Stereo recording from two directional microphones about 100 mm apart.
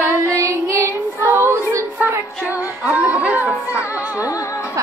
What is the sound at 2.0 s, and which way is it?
Music, 20° right (ahead or behind).